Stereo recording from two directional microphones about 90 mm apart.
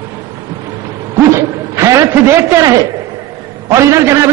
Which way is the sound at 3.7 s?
35° right (ahead or behind).